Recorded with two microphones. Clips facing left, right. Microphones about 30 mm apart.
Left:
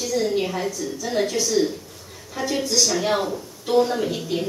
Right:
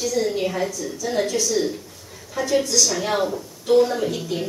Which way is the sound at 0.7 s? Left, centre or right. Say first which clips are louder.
Even; centre.